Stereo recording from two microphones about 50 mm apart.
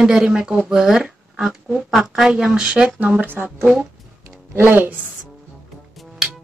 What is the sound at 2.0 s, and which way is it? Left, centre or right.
Speech, centre.